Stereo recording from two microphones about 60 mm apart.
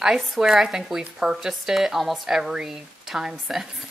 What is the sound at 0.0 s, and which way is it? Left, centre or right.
Speech, centre.